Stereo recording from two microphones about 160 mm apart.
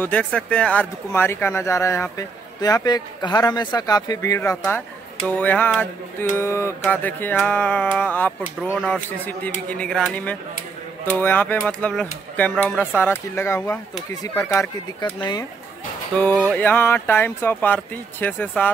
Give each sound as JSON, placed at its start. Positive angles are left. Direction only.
{"t": 0.0, "sound": "speech", "side_deg": 5}
{"t": 9.8, "sound": "speech", "side_deg": 5}
{"t": 16.2, "sound": "speech", "side_deg": 10}